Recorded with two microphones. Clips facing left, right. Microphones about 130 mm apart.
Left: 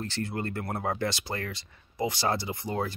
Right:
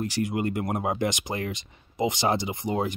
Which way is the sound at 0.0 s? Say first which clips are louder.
Right 6 dB; 15° right (ahead or behind).